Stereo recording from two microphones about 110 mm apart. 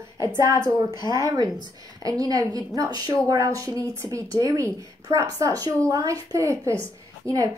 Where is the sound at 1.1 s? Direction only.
35° right (ahead or behind).